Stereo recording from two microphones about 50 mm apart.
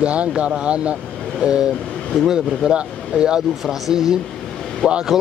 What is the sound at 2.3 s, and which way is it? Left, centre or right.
Speech, centre.